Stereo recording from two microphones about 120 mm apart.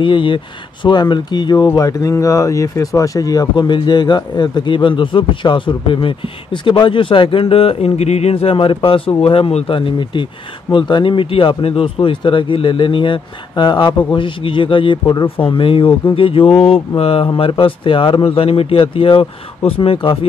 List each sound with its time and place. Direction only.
0.0 s speech: 45° left (ahead or behind)
9.7 s speech: 45° left (ahead or behind)